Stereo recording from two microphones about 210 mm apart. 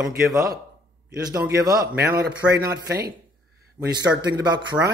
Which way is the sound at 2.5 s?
50° right (ahead or behind).